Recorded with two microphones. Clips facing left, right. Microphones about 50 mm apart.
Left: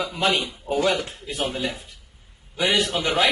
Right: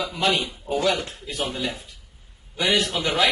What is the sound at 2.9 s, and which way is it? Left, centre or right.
Speech, left.